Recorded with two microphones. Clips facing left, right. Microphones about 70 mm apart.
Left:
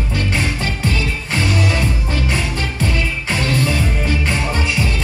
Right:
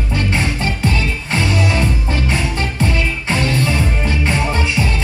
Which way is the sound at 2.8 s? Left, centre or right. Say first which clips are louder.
Right 2 dB; right.